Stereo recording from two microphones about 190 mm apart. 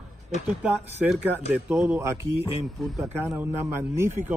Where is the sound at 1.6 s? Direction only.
10° right (ahead or behind).